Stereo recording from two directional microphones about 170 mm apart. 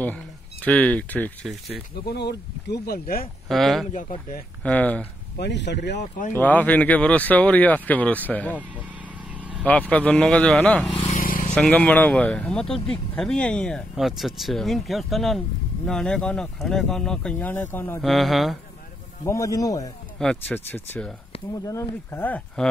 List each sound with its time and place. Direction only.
0.0 s speech: 10° left (ahead or behind)
2.0 s speech: 80° left; by 3.3 s 60° left (ahead or behind)
3.4 s speech: centre (ahead or behind)
5.4 s speech: 90° left
6.3 s speech: 10° left (ahead or behind)
9.4 s vehicle: 10° right (ahead or behind)
9.7 s speech: 5° left (ahead or behind)
11.1 s vehicle: 55° left (ahead or behind)
11.5 s speech: 5° left (ahead or behind)
18.0 s speech: centre (ahead or behind)
19.2 s speech: 20° left (ahead or behind)
20.2 s speech: 10° left (ahead or behind)